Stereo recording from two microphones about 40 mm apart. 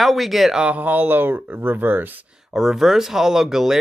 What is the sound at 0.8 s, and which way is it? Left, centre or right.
Speech, right.